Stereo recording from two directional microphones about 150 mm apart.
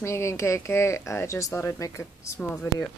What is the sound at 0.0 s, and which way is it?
Speech, 20° left (ahead or behind).